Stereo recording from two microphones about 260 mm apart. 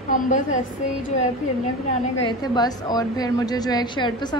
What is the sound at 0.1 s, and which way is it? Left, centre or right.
Speech, left.